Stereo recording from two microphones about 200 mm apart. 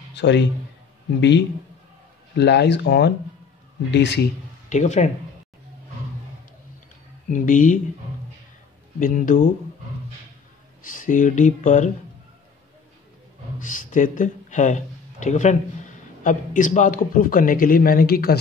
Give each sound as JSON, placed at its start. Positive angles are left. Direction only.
{"t": 0.1, "sound": "a man's voice", "side_deg": 60}
{"t": 2.3, "sound": "speech", "side_deg": 60}
{"t": 4.6, "sound": "speech", "side_deg": 35}
{"t": 7.2, "sound": "speech", "side_deg": 40}
{"t": 9.0, "sound": "a man's voice", "side_deg": 40}
{"t": 10.8, "sound": "speech", "side_deg": 45}
{"t": 13.6, "sound": "a man's voice", "side_deg": 40}